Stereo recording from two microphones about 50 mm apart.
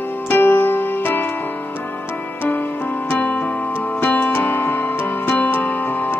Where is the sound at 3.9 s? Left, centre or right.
Left.